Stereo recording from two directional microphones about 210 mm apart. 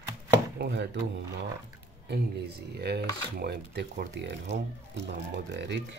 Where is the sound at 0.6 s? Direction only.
55° right (ahead or behind).